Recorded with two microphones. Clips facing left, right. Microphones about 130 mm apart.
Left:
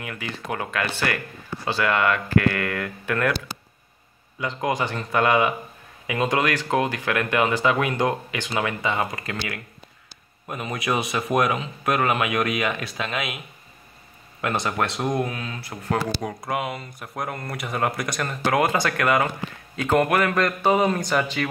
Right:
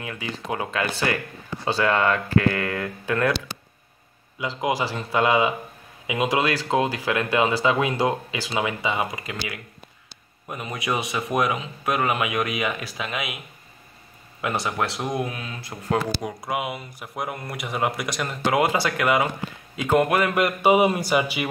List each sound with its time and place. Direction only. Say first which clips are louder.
0.0 s speech: right 1 dB; 20° right (ahead or behind)
4.6 s speech: even; 10° right (ahead or behind)
10.5 s a man's voice: left 2 dB; centre (ahead or behind)
14.4 s a man's voice: left 1 dB; 10° right (ahead or behind)
15.1 s speech: left 2 dB; 15° right (ahead or behind)
16.2 s speech: left 1 dB; 5° right (ahead or behind)
18.3 s speech: even; 15° right (ahead or behind)